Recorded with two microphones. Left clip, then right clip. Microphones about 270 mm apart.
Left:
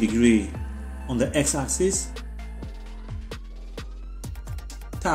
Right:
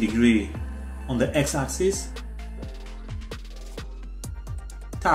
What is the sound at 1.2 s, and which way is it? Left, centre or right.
Speech, left.